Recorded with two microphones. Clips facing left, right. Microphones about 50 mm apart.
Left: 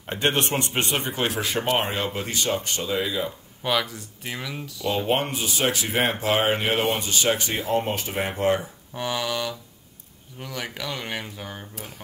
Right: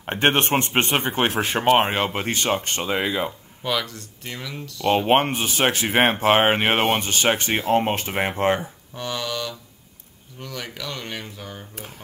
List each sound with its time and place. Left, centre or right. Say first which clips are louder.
0.0 s speech: right 4 dB; right
3.6 s speech: left 1 dB; centre
4.9 s speech: right 6 dB; right
8.9 s speech: left 1 dB; centre